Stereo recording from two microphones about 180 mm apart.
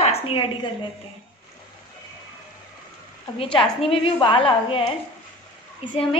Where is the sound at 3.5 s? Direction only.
30° left (ahead or behind).